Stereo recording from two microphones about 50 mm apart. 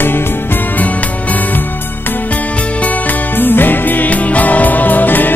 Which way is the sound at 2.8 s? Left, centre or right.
Left.